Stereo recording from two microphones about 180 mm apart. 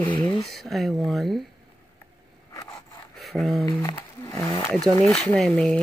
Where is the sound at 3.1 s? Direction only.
Centre (ahead or behind).